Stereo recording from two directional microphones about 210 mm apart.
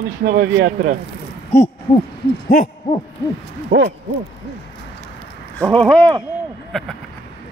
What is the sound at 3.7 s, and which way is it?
Speech, 55° right (ahead or behind).